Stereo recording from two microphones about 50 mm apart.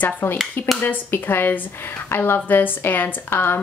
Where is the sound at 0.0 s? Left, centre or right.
Left.